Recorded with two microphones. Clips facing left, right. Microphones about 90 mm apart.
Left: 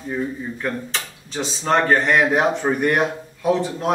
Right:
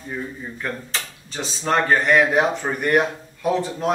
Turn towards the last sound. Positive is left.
turn(degrees=0)  # may be behind; listen again after turning